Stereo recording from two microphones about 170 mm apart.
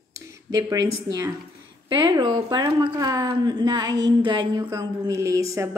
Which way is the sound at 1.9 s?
25° right (ahead or behind).